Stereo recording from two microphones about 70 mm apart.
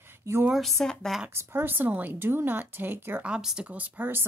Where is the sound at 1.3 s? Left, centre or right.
Right.